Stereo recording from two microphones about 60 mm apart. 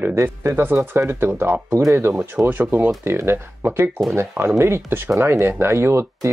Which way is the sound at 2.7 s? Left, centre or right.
Right.